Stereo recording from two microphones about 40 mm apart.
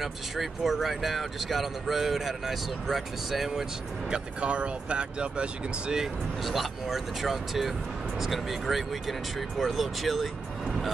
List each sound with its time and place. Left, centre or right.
0.0 s speech: centre
4.1 s speech: right
6.4 s speech: centre